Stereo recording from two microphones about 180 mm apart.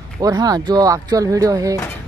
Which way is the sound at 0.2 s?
20° right (ahead or behind).